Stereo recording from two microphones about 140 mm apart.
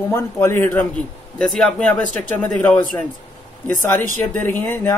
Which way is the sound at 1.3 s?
5° left (ahead or behind).